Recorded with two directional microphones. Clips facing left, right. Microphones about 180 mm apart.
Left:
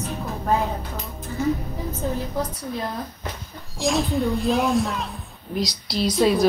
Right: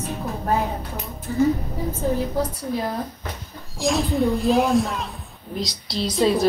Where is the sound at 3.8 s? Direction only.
Centre (ahead or behind).